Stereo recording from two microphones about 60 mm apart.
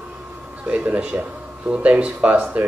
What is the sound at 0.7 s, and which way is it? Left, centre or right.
Speech, right.